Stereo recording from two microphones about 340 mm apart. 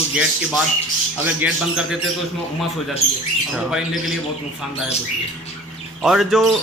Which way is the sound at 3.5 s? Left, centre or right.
Centre.